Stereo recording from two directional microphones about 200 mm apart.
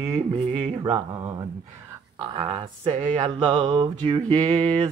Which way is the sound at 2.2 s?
30° right (ahead or behind).